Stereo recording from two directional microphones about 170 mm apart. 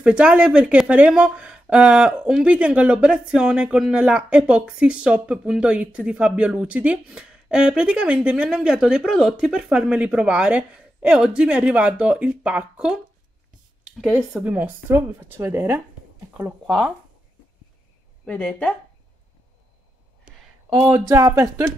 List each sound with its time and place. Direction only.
0.0 s speech: 5° right (ahead or behind)
16.6 s speech: centre (ahead or behind)
18.2 s speech: 5° left (ahead or behind)
20.8 s speech: 20° right (ahead or behind)